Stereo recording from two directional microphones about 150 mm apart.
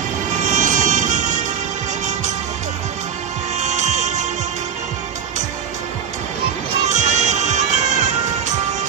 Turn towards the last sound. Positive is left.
turn(degrees=-50)  # may be behind; listen again after turning